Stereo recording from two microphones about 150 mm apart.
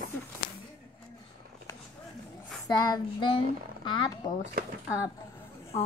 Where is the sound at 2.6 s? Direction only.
25° left (ahead or behind).